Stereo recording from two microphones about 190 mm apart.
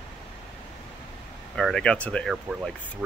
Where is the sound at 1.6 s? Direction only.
5° left (ahead or behind).